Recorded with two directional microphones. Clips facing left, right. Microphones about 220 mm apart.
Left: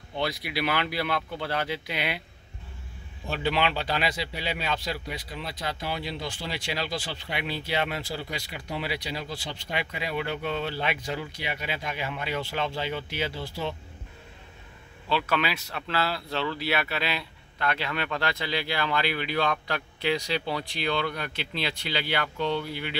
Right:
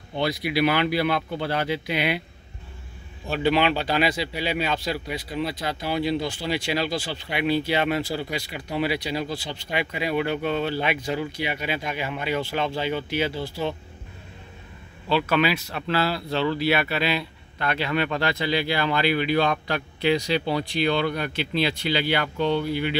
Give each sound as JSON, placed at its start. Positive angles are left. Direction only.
{"t": 0.2, "sound": "speech", "side_deg": -5}
{"t": 3.3, "sound": "speech", "side_deg": -5}
{"t": 15.0, "sound": "speech", "side_deg": -5}